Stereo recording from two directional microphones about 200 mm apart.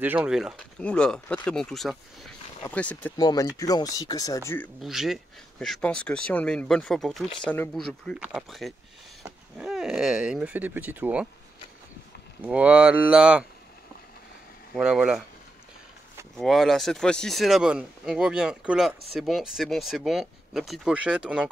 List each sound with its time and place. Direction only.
0.0 s speech: 5° right (ahead or behind)
3.2 s speech: 20° left (ahead or behind)
4.8 s speech: centre (ahead or behind)
12.4 s speech: 5° right (ahead or behind)
14.8 s speech: 5° right (ahead or behind)
16.3 s speech: centre (ahead or behind)